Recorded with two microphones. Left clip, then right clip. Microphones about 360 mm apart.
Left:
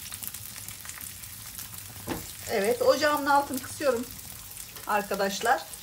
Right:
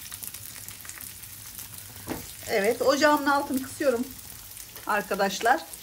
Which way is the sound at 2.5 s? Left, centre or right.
Right.